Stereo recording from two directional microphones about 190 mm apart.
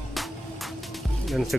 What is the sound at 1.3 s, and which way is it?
Speech, centre (ahead or behind).